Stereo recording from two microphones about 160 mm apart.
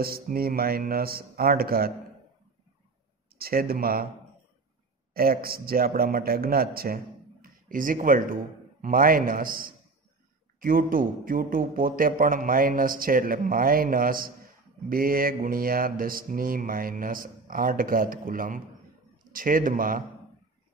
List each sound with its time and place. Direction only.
0.0 s speech: 70° right (ahead or behind)
3.3 s speech: 70° right (ahead or behind)
5.1 s a man's voice: 70° right (ahead or behind)